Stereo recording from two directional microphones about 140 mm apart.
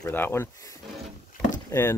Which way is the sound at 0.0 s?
15° left (ahead or behind).